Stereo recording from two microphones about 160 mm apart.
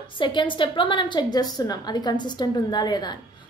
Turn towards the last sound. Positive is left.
turn(degrees=25)  # may be behind; listen again after turning